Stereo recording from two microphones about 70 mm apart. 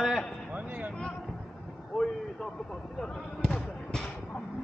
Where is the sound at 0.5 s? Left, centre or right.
Right.